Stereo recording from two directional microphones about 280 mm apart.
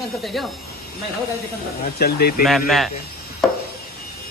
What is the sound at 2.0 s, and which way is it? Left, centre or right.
Speech, left.